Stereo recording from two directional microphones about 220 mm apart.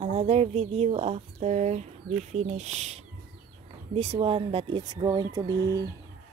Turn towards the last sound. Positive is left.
turn(degrees=-15)  # may be behind; listen again after turning